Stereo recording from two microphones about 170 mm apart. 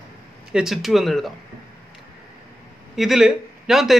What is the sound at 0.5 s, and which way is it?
Speech, centre (ahead or behind).